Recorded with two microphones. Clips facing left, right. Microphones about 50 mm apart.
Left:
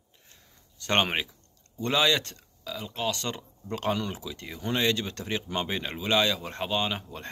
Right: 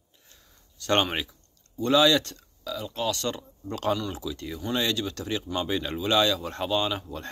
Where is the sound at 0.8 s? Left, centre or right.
Left.